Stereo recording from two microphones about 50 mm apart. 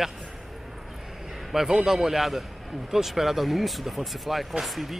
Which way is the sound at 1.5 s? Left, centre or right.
Centre.